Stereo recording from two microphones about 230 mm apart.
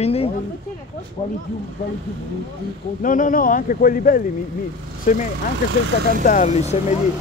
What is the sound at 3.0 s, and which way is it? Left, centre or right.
Speech, left.